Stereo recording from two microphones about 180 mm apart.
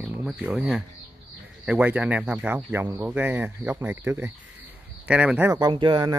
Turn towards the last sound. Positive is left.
turn(degrees=-25)  # may be behind; listen again after turning